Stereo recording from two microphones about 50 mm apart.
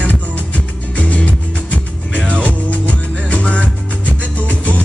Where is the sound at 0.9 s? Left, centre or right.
Left.